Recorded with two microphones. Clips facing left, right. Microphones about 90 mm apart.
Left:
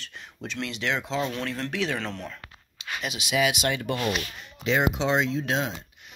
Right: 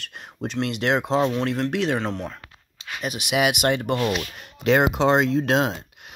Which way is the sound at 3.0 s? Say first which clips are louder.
Right 3 dB; 50° right (ahead or behind).